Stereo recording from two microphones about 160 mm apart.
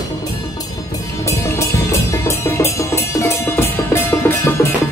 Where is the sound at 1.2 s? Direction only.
15° left (ahead or behind).